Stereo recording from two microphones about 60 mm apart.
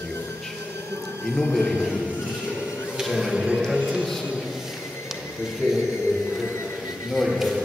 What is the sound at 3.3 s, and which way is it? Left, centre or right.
Speech, centre.